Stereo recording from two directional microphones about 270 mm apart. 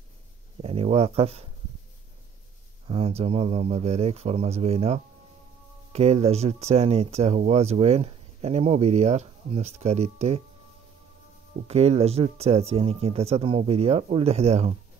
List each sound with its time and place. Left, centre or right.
0.6 s a sound: right
2.9 s speech: right
11.6 s speech: right